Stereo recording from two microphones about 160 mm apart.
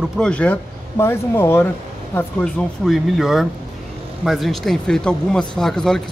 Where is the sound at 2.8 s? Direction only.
Centre (ahead or behind).